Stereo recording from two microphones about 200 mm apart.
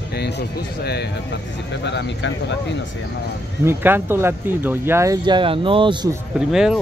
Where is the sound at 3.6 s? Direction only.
10° right (ahead or behind).